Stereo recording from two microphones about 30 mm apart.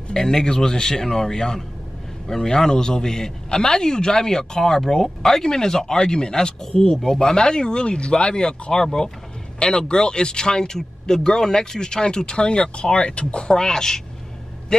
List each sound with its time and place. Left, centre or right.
0.1 s a man's voice: centre
10.8 s a man's voice: centre; by 13.5 s left
13.5 s a man's voice: left